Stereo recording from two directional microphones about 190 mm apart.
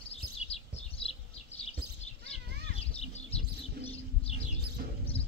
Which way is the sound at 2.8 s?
30° left (ahead or behind).